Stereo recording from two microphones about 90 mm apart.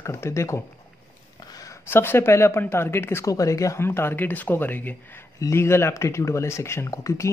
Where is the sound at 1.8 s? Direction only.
25° left (ahead or behind).